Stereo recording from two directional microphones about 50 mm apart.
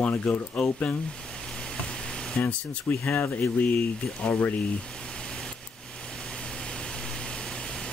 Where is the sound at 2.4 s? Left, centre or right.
Left.